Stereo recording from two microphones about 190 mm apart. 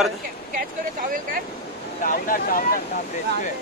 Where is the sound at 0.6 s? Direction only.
45° right (ahead or behind).